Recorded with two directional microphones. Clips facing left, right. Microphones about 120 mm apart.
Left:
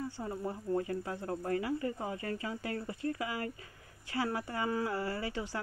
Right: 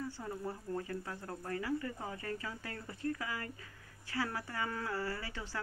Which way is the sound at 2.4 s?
20° left (ahead or behind).